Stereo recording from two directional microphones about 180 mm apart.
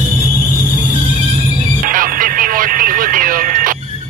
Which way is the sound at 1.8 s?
50° right (ahead or behind).